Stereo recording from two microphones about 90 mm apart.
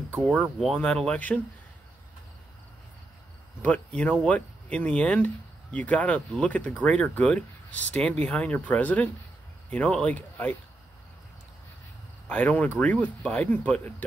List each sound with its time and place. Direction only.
0.2 s speech: 5° left (ahead or behind)
3.6 s speech: 15° left (ahead or behind)
12.3 s speech: 15° left (ahead or behind)